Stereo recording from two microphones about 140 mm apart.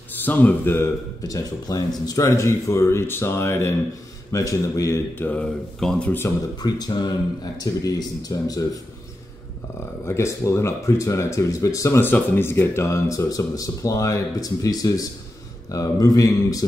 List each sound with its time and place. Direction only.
0.1 s speech: 15° left (ahead or behind)
6.2 s speech: 30° left (ahead or behind)
10.0 s speech: 20° left (ahead or behind)